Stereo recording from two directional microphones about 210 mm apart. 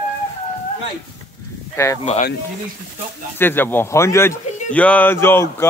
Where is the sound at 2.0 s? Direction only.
30° left (ahead or behind).